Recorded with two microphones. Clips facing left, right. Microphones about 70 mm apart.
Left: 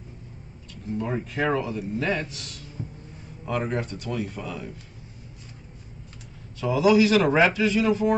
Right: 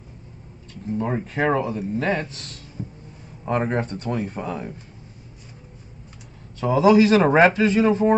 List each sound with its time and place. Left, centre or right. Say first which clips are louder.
0.9 s speech: right 3 dB; right
2.8 s a sound: right 3 dB; centre
3.4 s speech: right 4 dB; right
6.6 s speech: right 4 dB; right